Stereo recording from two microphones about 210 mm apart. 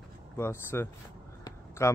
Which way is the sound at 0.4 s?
10° left (ahead or behind).